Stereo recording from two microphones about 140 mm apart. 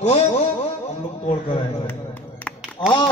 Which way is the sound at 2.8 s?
35° left (ahead or behind).